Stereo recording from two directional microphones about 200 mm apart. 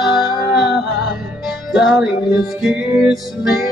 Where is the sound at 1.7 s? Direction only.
Centre (ahead or behind).